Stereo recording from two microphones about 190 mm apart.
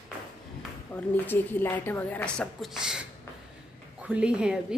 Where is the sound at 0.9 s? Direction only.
10° left (ahead or behind).